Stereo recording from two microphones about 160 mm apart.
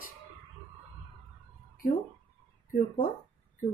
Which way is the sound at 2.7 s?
55° left (ahead or behind).